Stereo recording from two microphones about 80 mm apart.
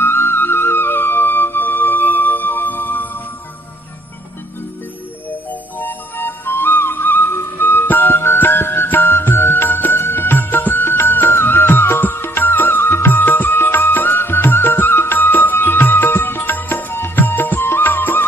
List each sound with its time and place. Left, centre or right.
0.0 s flute: left
5.3 s music: left